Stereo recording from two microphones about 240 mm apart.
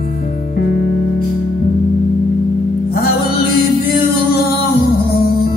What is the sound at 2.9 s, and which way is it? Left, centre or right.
Music, left.